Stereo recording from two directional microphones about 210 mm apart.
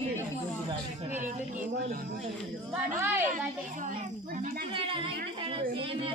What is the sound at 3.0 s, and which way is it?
Speech, 10° right (ahead or behind).